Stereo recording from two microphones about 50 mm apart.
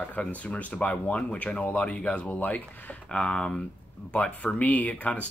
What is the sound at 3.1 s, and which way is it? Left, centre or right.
Speech, centre.